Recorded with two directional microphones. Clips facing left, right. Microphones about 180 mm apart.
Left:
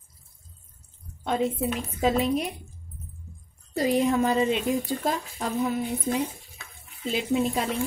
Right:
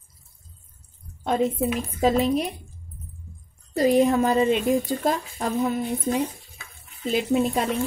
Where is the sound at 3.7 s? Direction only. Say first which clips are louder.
Right 4 dB; 40° right (ahead or behind).